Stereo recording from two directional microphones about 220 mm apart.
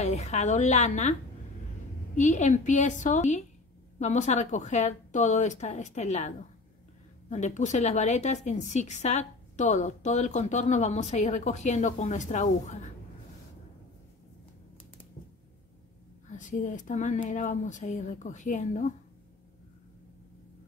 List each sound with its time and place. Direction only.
0.0 s a woman's voice: 30° left (ahead or behind)
2.1 s a woman's voice: 35° left (ahead or behind)
16.3 s a woman's voice: 35° left (ahead or behind)